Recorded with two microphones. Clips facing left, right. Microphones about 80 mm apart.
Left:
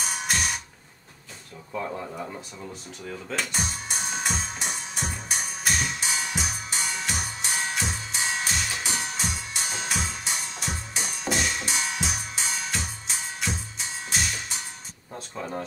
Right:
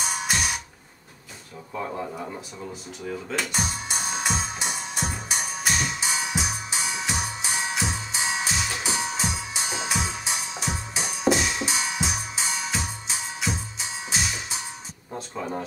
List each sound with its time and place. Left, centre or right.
0.0 s music: centre
1.7 s speech: centre
3.1 s music: centre
15.1 s speech: centre